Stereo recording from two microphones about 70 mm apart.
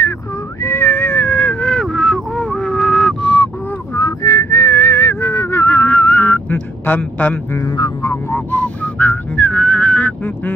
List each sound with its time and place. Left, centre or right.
0.7 s a sound: left
1.7 s a sound: centre
4.0 s whistling: left
5.6 s music: left
7.6 s speech: left
8.0 s music: left
8.5 s whistling: left